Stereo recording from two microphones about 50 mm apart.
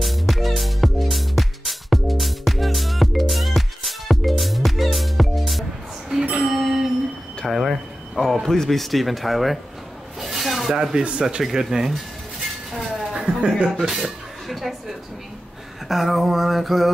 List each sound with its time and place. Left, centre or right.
0.0 s music: centre
7.4 s a sound: centre
10.7 s speech: centre
12.7 s dishes: centre
13.7 s speech: centre
15.9 s a sound: centre